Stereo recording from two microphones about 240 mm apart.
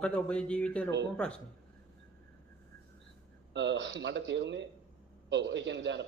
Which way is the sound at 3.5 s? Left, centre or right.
Right.